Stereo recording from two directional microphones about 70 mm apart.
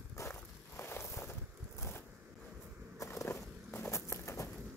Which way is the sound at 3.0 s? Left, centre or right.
Left.